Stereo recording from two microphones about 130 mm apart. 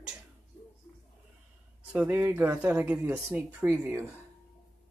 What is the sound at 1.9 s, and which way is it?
Speech, 10° right (ahead or behind).